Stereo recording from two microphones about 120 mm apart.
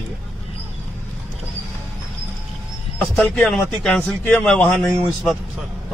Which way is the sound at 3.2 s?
5° left (ahead or behind).